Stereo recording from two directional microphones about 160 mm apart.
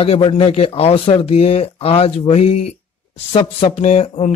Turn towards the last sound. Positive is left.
turn(degrees=40)  # may be behind; listen again after turning